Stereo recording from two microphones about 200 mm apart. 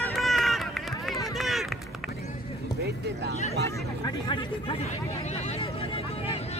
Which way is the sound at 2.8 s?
55° right (ahead or behind).